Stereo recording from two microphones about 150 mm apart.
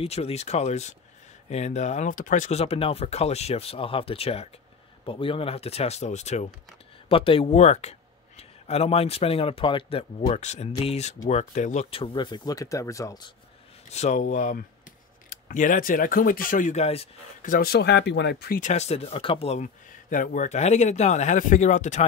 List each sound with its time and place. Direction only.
0.0 s speech: 45° left (ahead or behind)
7.1 s speech: 40° left (ahead or behind)
13.8 s speech: 50° left (ahead or behind)
17.4 s speech: 70° left (ahead or behind)
18.7 s speech: 45° left (ahead or behind)